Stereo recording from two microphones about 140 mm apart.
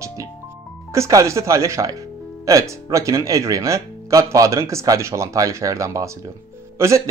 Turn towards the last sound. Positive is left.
turn(degrees=-20)  # may be behind; listen again after turning